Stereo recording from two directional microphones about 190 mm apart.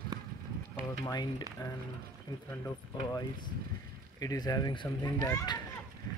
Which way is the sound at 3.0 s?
20° left (ahead or behind).